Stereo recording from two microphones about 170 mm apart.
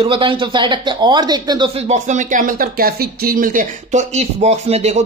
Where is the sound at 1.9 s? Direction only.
45° right (ahead or behind).